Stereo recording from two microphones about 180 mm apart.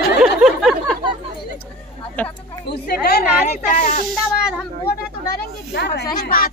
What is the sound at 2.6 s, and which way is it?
Speech, 65° left (ahead or behind).